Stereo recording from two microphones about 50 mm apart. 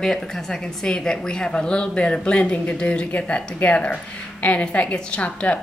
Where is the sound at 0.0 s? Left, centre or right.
Centre.